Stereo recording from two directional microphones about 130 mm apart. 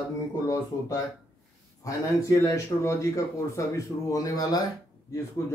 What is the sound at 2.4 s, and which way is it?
Speech, 20° left (ahead or behind).